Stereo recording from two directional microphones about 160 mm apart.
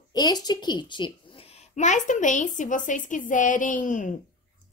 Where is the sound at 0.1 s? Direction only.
25° left (ahead or behind).